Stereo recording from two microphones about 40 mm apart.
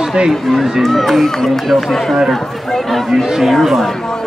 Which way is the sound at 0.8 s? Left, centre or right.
Centre.